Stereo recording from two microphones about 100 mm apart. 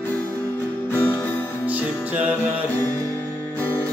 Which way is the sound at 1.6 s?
15° right (ahead or behind).